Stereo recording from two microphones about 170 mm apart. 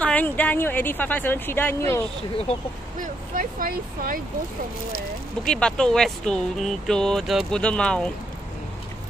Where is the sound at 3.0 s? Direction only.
55° right (ahead or behind).